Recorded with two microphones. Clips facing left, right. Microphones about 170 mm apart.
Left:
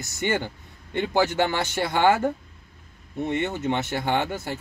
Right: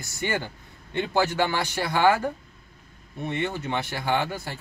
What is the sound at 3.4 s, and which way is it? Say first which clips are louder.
Speech: left 2 dB; 20° left (ahead or behind).